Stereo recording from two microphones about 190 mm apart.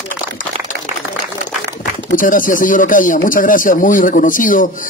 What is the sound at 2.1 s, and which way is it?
Speech, 45° left (ahead or behind).